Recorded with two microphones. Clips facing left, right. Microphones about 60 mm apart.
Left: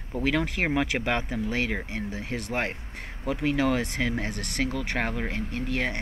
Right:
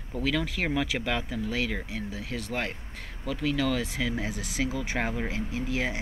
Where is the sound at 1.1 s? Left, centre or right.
Centre.